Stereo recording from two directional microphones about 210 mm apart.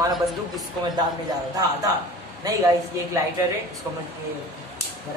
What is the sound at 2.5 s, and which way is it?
Speech, 15° right (ahead or behind).